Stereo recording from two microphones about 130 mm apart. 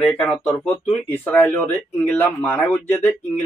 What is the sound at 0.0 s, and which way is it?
A man's voice, 10° left (ahead or behind).